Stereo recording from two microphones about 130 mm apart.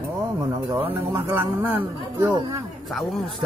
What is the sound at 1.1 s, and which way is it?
Speech, 20° right (ahead or behind).